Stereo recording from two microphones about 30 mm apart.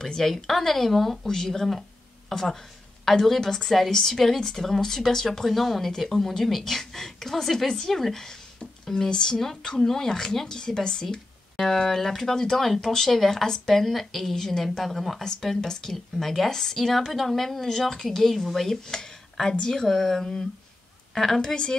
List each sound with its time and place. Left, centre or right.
0.0 s speech: centre
1.2 s speech: centre
1.7 s a sound: centre
3.1 s speech: centre
3.3 s speech: centre
9.1 s speech: left
9.8 s speech: centre
11.6 s speech: centre
15.2 s speech: centre
19.5 s speech: left
19.8 s speech: centre